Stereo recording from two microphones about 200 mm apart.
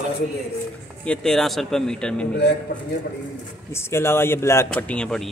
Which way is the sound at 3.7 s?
10° left (ahead or behind).